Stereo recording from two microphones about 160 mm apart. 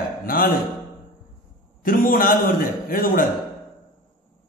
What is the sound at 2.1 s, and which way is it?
A man's voice, 60° left (ahead or behind).